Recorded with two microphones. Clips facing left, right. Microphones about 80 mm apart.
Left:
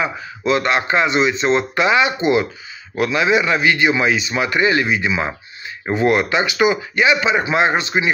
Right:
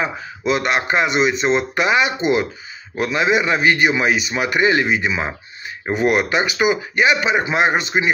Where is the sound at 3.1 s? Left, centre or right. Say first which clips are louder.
Even; right.